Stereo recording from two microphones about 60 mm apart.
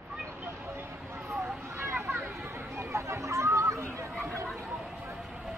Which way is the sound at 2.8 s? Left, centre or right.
Right.